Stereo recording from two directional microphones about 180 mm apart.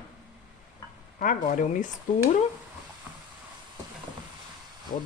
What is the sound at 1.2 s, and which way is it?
Speech, 50° left (ahead or behind).